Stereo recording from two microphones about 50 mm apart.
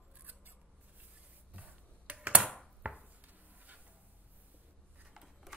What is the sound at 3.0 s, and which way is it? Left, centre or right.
Cupboard open or close, right.